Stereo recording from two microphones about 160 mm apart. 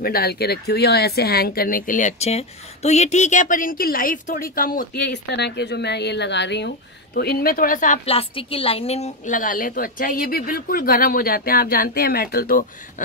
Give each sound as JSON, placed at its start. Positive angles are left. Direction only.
{"t": 0.0, "sound": "speech", "side_deg": 75}
{"t": 7.2, "sound": "a woman's voice", "side_deg": 70}
{"t": 8.0, "sound": "a woman's voice", "side_deg": 35}